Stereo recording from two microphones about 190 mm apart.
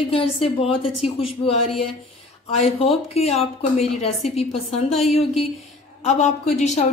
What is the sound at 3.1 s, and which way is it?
Speech, 35° left (ahead or behind).